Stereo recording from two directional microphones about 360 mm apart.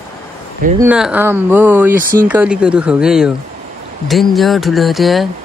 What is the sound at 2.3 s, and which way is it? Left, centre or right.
Speech, centre.